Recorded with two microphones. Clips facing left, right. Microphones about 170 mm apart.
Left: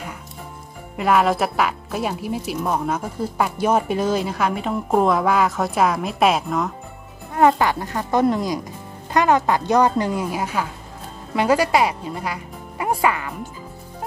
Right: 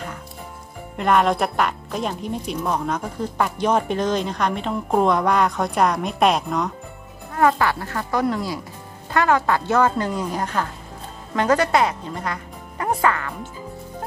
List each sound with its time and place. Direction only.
0.9 s speech: 5° left (ahead or behind)
7.3 s a woman's voice: 20° left (ahead or behind)